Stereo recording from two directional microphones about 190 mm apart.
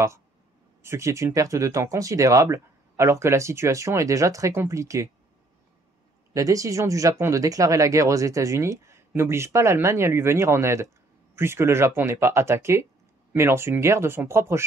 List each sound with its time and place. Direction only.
0.8 s speech: 15° right (ahead or behind)
6.3 s speech: 15° right (ahead or behind)